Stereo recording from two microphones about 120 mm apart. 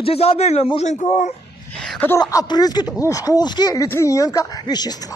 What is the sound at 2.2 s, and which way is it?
Speech, 35° left (ahead or behind).